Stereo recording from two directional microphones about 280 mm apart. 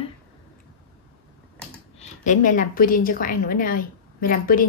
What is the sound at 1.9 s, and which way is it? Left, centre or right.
A woman's voice, left.